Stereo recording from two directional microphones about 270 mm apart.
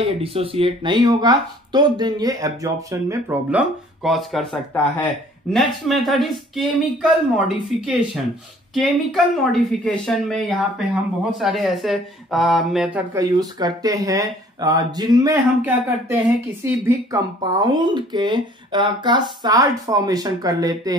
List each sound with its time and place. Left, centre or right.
0.0 s speech: right